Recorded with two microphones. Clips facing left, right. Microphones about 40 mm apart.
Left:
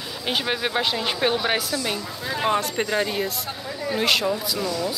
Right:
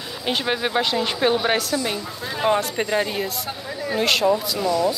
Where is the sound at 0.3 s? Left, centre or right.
Centre.